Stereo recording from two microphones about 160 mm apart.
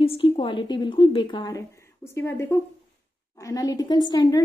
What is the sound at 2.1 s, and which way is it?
A woman's voice, 15° left (ahead or behind).